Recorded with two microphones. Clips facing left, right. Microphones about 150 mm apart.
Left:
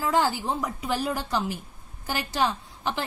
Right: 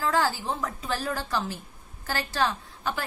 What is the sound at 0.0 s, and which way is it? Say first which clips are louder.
A woman's voice: left 2 dB; 15° left (ahead or behind).